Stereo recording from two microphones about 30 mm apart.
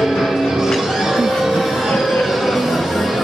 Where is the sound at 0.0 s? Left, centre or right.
Centre.